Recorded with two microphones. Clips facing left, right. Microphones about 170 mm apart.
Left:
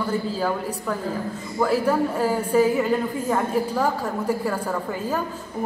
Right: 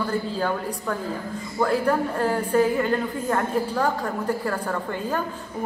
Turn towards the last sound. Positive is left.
turn(degrees=5)  # may be behind; listen again after turning